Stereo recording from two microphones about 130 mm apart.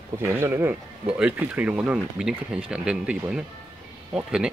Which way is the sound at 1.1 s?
10° right (ahead or behind).